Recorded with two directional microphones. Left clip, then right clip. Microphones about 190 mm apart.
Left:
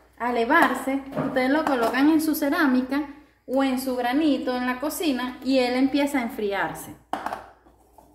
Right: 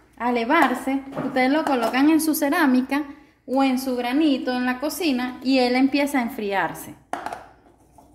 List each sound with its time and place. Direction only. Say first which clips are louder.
0.2 s a woman's voice: right 1 dB; 55° right (ahead or behind)